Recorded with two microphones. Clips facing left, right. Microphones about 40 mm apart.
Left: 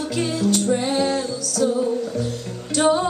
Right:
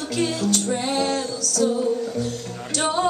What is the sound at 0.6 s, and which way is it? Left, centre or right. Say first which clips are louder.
Music: left 3 dB; centre.